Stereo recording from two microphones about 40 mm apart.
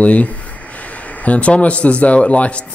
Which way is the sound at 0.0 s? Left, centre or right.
Left.